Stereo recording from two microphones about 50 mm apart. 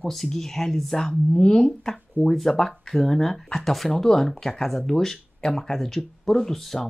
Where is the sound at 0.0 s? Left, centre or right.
Centre.